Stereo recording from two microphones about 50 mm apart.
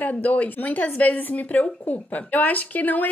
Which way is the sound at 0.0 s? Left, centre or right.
Left.